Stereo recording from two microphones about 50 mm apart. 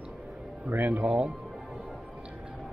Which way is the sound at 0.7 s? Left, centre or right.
Right.